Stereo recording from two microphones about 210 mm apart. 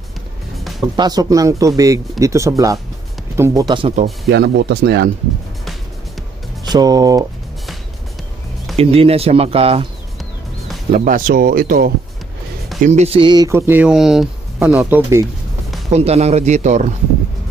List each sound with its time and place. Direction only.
0.9 s speech: 20° right (ahead or behind)
4.3 s speech: 55° right (ahead or behind)
6.6 s speech: 20° right (ahead or behind)
8.7 s speech: 30° right (ahead or behind)
10.9 s speech: 40° right (ahead or behind)
12.8 s speech: 30° right (ahead or behind); by 15.2 s 10° right (ahead or behind)
15.9 s speech: 30° right (ahead or behind)